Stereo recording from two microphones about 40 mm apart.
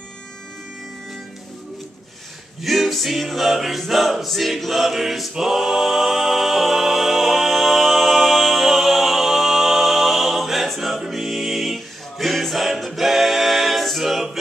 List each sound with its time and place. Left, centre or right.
2.6 s music: centre
5.3 s a capella: centre